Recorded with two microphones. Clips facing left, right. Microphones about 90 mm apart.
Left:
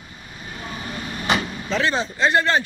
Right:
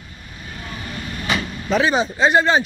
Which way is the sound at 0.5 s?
15° left (ahead or behind).